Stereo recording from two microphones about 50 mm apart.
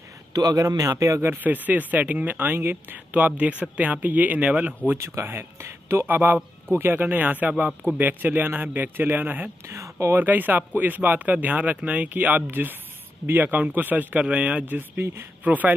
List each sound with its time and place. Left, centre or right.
0.7 s speech: right
1.2 s speech: right
3.1 s speech: right
4.5 s speech: right
4.9 s speech: right
5.2 s speech: right
6.0 s speech: right
9.7 s speech: right
10.1 s speech: right
15.0 s speech: right
15.4 s speech: right